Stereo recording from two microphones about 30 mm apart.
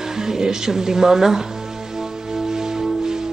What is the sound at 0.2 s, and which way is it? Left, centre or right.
Speech, centre.